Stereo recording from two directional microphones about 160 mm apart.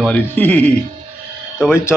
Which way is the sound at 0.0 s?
10° left (ahead or behind).